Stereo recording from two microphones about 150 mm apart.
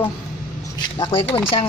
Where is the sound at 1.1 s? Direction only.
40° left (ahead or behind).